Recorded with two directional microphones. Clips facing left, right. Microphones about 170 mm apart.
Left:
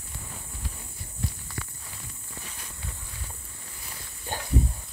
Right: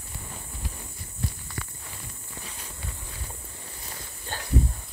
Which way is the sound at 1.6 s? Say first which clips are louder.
Right 1 dB; 65° right (ahead or behind).